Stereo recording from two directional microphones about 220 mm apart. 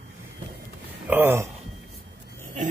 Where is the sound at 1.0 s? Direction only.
10° right (ahead or behind).